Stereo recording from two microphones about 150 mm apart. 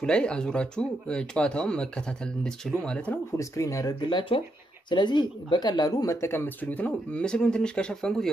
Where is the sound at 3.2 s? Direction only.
20° left (ahead or behind).